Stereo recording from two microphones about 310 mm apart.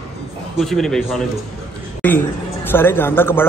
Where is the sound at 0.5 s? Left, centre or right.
Centre.